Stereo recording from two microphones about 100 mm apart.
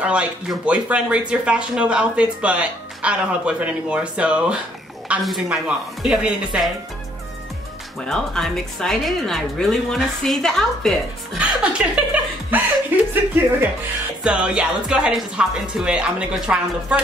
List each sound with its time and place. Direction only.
0.0 s speech: 10° right (ahead or behind)
5.2 s speech: centre (ahead or behind)
8.0 s speech: 5° left (ahead or behind)
11.3 s chuckle: 10° right (ahead or behind)
13.1 s speech: 20° right (ahead or behind)
14.2 s speech: 10° right (ahead or behind)